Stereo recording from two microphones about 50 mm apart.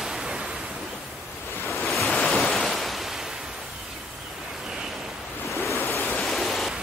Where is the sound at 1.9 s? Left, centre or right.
Centre.